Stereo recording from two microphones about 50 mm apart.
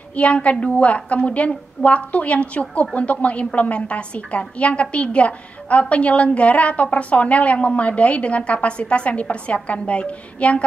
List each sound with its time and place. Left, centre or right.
0.1 s a woman's voice: left